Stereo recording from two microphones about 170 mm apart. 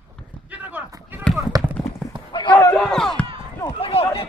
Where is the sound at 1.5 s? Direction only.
20° right (ahead or behind).